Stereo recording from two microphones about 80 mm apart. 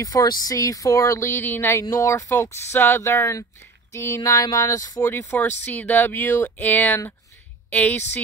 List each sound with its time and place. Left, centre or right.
0.0 s speech: left
1.4 s speech: left
1.9 s a sound: left
5.4 s speech: left